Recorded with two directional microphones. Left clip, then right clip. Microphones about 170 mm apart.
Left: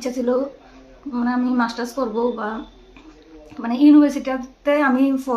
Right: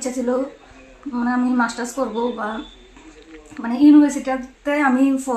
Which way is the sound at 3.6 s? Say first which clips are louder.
Right 1 dB; 30° left (ahead or behind).